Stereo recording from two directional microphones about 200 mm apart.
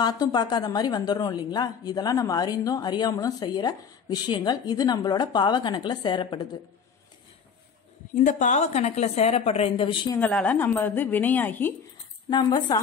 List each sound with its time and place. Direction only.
0.0 s a woman's voice: 20° left (ahead or behind)
8.1 s a woman's voice: 40° left (ahead or behind)
10.1 s a woman's voice: 5° left (ahead or behind)
12.3 s a woman's voice: 20° left (ahead or behind)